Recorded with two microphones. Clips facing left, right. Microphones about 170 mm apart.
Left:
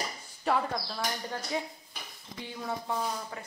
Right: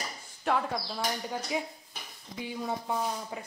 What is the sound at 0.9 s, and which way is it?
Speech, 10° right (ahead or behind).